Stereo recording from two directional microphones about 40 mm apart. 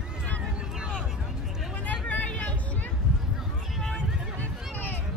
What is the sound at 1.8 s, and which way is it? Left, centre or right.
Vehicle, left.